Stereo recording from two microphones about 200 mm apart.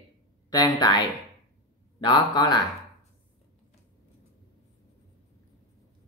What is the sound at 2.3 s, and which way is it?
Speech, 20° left (ahead or behind).